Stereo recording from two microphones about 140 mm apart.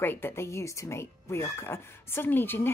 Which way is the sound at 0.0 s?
15° left (ahead or behind).